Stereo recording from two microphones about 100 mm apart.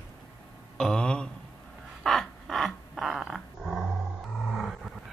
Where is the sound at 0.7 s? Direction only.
5° left (ahead or behind).